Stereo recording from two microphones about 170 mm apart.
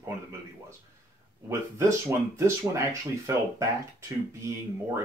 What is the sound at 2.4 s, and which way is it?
Speech, 20° right (ahead or behind).